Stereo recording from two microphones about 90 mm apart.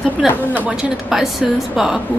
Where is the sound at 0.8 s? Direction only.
5° right (ahead or behind).